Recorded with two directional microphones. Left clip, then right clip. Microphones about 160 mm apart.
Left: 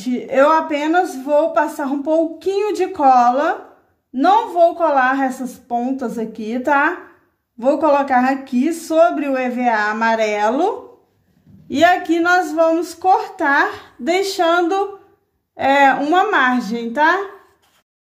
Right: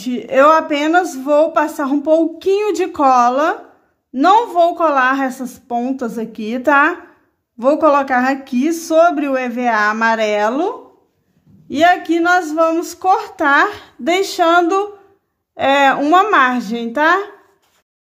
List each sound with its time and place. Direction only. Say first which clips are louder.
0.0 s speech: right 3 dB; 35° right (ahead or behind)
11.7 s speech: right 1 dB; 20° right (ahead or behind); by 17.2 s 35° right (ahead or behind)